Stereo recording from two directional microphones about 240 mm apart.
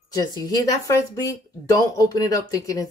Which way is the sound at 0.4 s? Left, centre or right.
Centre.